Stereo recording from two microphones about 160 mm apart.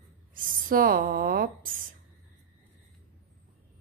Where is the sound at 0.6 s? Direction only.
65° right (ahead or behind).